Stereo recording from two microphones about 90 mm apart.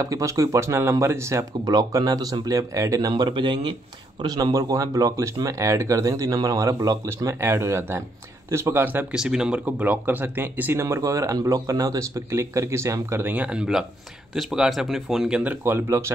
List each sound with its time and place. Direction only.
0.0 s speech: 35° right (ahead or behind)
3.1 s speech: 60° right (ahead or behind)
4.4 s speech: 40° right (ahead or behind)
7.4 s speech: 30° right (ahead or behind)
9.1 s speech: 5° right (ahead or behind)
9.7 s speech: 20° right (ahead or behind)
11.0 s speech: 35° right (ahead or behind)
13.3 s speech: 15° right (ahead or behind)
15.6 s speech: 25° right (ahead or behind)